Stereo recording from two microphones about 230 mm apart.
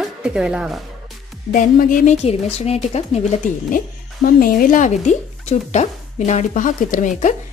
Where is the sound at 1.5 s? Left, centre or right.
Left.